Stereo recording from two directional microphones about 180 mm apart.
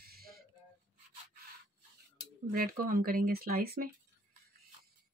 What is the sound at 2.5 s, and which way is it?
Speech, 50° right (ahead or behind).